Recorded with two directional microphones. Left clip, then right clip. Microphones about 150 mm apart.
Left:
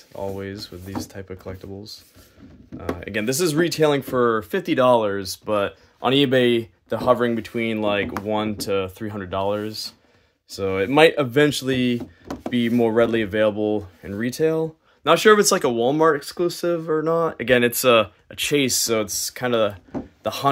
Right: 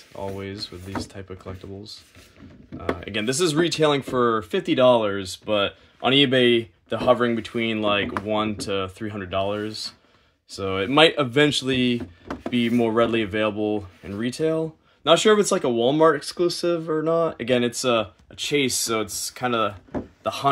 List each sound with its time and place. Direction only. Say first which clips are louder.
0.1 s speech: left 2 dB; centre (ahead or behind)
15.0 s speech: left 2 dB; 5° right (ahead or behind)
18.4 s speech: left 2 dB; 25° left (ahead or behind)